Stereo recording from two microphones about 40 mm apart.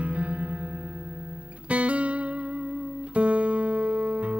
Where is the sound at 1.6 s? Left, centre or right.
Right.